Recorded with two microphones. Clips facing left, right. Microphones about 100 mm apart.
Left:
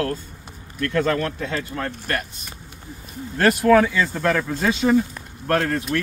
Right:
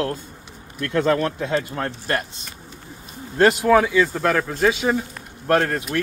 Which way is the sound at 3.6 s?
10° right (ahead or behind).